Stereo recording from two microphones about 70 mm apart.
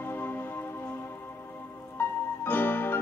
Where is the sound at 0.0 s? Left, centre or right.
Left.